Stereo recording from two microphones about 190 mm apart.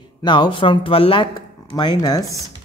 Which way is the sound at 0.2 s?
25° left (ahead or behind).